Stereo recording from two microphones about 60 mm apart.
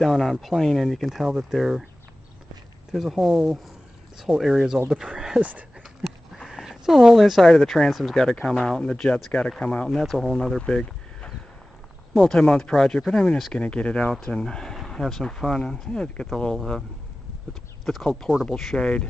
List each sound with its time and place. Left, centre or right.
0.0 s speech: centre
2.9 s speech: centre
5.4 s speech: right
6.0 s sniff: centre
7.5 s speech: centre
9.8 s speech: centre
10.6 s speech: centre
12.1 s speech: centre
14.1 s speech: centre
18.4 s speech: centre